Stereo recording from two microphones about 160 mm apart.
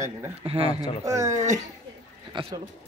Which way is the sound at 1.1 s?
20° right (ahead or behind).